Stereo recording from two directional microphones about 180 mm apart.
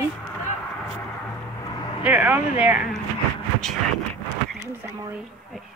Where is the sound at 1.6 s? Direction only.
25° left (ahead or behind).